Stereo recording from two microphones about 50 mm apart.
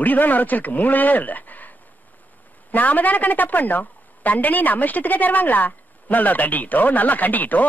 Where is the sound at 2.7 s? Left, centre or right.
Left.